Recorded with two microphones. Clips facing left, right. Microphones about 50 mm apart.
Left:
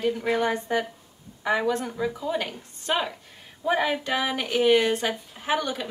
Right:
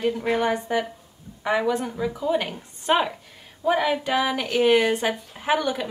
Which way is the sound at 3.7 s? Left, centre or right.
Centre.